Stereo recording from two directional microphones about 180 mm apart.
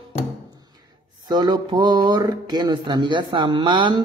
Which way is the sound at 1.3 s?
20° right (ahead or behind).